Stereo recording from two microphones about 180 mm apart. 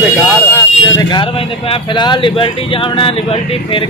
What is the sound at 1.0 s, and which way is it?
Speech, 25° left (ahead or behind).